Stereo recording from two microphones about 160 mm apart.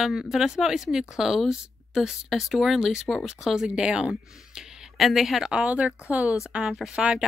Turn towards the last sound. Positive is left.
turn(degrees=-5)  # may be behind; listen again after turning